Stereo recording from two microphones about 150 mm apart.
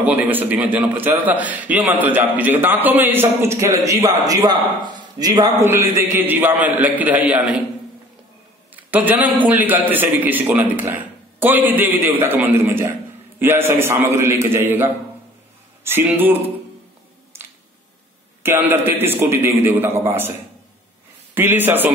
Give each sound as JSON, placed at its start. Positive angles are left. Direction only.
{"t": 0.0, "sound": "a man's voice", "side_deg": -10}
{"t": 5.7, "sound": "a man's voice", "side_deg": -15}
{"t": 8.7, "sound": "a man's voice", "side_deg": -10}
{"t": 18.4, "sound": "a man's voice", "side_deg": -15}
{"t": 21.4, "sound": "a man's voice", "side_deg": -15}